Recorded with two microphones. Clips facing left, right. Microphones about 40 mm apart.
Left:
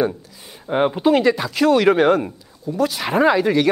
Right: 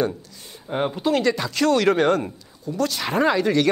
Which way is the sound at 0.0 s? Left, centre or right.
Centre.